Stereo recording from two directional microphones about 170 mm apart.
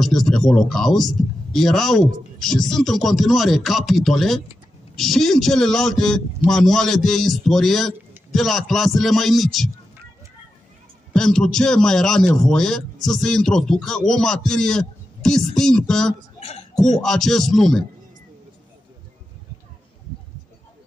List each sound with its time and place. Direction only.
0.0 s a man's voice: centre (ahead or behind)
11.1 s a man's voice: 5° left (ahead or behind)
16.3 s a sound: 35° left (ahead or behind)
17.0 s a man's voice: centre (ahead or behind)